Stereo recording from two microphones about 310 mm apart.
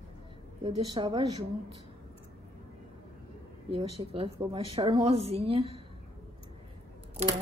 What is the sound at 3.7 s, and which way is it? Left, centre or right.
A woman's voice, centre.